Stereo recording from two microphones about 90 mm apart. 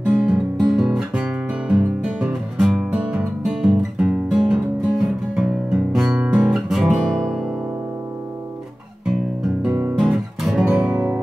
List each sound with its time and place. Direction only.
0.1 s guitar: 10° right (ahead or behind)
3.7 s music: 5° right (ahead or behind)
6.1 s guitar: 15° right (ahead or behind)
9.6 s music: 15° right (ahead or behind)
9.9 s music: 5° right (ahead or behind)